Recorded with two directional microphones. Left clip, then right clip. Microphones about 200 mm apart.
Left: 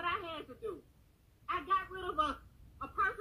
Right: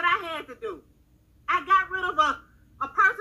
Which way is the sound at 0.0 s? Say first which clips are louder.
Right 13 dB; 20° right (ahead or behind).